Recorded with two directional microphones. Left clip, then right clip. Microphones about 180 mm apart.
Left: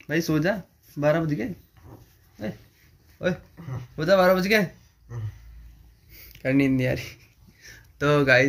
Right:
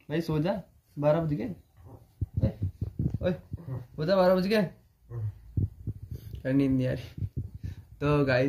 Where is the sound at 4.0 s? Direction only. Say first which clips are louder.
Left 5 dB; 30° left (ahead or behind).